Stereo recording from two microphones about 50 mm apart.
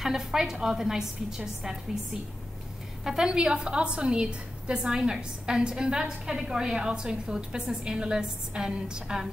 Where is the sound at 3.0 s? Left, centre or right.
Centre.